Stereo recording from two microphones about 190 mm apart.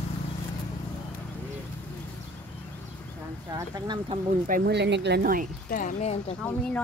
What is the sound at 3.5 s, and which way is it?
Speech, 20° right (ahead or behind).